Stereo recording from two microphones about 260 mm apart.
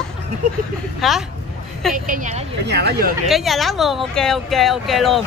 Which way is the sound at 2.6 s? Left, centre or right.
Right.